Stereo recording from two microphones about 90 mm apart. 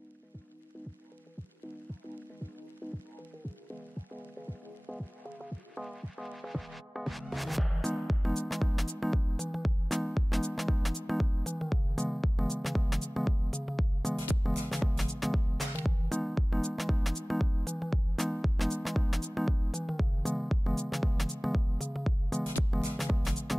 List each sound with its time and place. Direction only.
4.8 s music: 15° left (ahead or behind)
5.8 s music: 20° right (ahead or behind)
6.2 s music: centre (ahead or behind)